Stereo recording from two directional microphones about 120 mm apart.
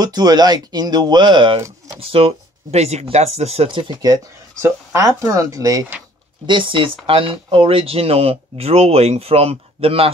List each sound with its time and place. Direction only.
0.0 s speech: 35° right (ahead or behind); by 3.6 s 60° right (ahead or behind)
3.6 s speech: 40° right (ahead or behind)
6.4 s speech: 45° right (ahead or behind)